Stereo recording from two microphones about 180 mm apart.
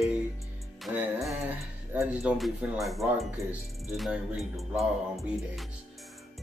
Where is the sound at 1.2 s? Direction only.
10° right (ahead or behind).